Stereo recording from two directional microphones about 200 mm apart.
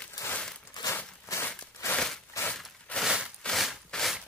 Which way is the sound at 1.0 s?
10° left (ahead or behind).